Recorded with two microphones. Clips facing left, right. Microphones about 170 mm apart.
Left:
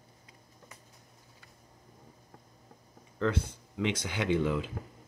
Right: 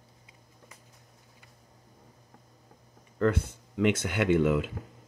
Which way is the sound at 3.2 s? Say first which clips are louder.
Right 4 dB; 50° right (ahead or behind).